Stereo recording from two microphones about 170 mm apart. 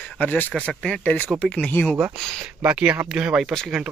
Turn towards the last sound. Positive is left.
turn(degrees=0)  # may be behind; listen again after turning